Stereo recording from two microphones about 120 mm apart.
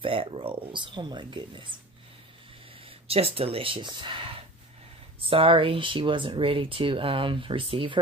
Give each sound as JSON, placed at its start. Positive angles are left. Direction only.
{"t": 0.0, "sound": "speech", "side_deg": -50}
{"t": 2.8, "sound": "speech", "side_deg": -55}